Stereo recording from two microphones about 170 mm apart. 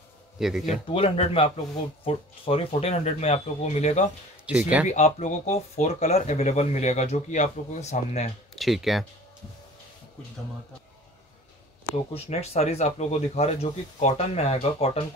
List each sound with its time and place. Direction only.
0.4 s speech: centre (ahead or behind)
0.9 s speech: 35° left (ahead or behind)
4.5 s speech: 5° right (ahead or behind)
4.8 s speech: 45° left (ahead or behind)
8.5 s speech: centre (ahead or behind)
12.1 s speech: 40° left (ahead or behind)